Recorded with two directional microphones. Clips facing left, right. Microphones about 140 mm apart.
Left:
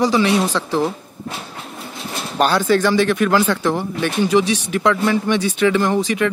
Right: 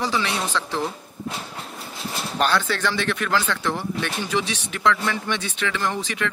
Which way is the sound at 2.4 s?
10° left (ahead or behind).